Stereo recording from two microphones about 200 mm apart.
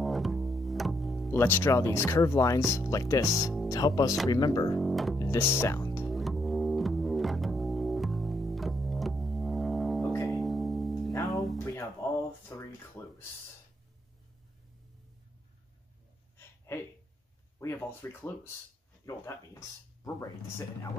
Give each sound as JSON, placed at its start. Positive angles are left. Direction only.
{"t": 0.0, "sound": "music", "side_deg": 0}
{"t": 1.4, "sound": "speech", "side_deg": 10}
{"t": 4.7, "sound": "music", "side_deg": 0}
{"t": 5.2, "sound": "music", "side_deg": 15}
{"t": 6.0, "sound": "music", "side_deg": 0}
{"t": 12.5, "sound": "speech", "side_deg": 15}
{"t": 16.3, "sound": "a sound", "side_deg": 10}
{"t": 17.6, "sound": "speech", "side_deg": 10}